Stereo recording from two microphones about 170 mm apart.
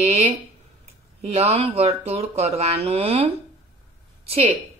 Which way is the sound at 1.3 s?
35° right (ahead or behind).